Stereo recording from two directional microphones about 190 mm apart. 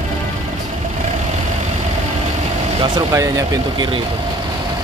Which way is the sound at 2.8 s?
20° right (ahead or behind).